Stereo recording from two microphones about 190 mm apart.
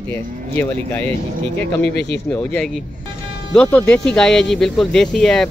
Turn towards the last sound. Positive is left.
turn(degrees=5)  # may be behind; listen again after turning